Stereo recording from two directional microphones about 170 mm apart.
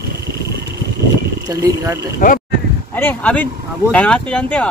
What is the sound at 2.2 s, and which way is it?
Speech, 55° left (ahead or behind).